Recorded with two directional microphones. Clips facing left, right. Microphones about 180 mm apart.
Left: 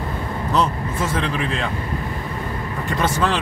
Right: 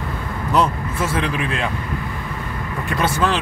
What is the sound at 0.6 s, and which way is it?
Speech, 10° right (ahead or behind).